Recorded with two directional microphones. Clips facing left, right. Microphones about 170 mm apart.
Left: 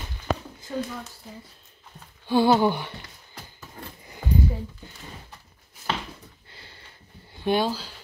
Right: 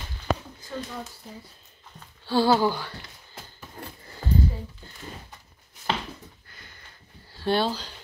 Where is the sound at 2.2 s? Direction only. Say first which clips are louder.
Left 2 dB; 20° left (ahead or behind).